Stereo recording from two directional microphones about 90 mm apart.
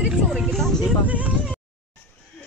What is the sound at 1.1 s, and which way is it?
Speech, 15° right (ahead or behind).